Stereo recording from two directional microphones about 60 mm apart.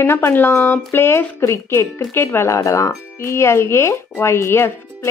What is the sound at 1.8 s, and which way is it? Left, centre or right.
Speech, left.